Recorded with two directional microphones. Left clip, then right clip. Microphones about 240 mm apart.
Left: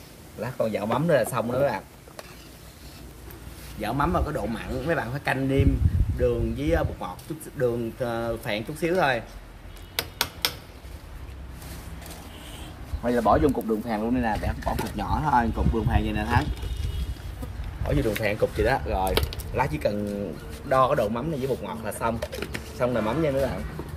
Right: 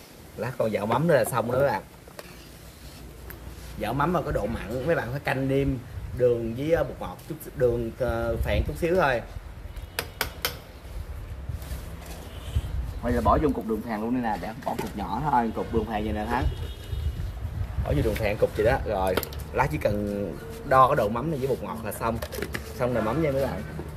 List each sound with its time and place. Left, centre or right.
0.4 s speech: right
3.8 s a man's voice: centre
9.9 s a sound: centre
13.0 s speech: centre
17.8 s a man's voice: centre
19.3 s speech: centre